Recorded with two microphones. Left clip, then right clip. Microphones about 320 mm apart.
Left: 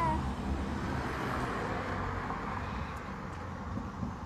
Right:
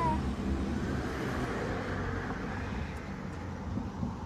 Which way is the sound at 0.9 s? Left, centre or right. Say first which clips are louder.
Left 1 dB; left.